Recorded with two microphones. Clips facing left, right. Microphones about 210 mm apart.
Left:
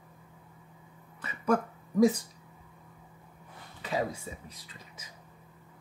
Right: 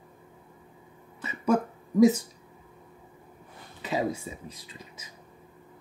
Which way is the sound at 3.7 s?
25° right (ahead or behind).